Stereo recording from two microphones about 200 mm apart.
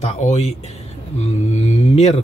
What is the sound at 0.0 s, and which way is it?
A man's voice, 35° left (ahead or behind).